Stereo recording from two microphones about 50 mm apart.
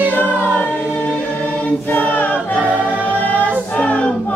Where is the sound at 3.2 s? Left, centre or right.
Left.